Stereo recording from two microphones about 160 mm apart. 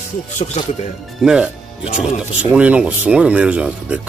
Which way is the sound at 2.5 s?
5° right (ahead or behind).